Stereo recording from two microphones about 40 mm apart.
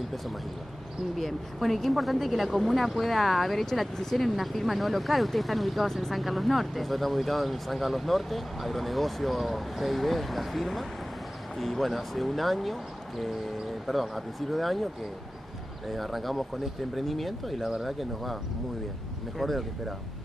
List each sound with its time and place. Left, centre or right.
1.1 s speech: centre
13.8 s speech: centre
15.9 s speech: centre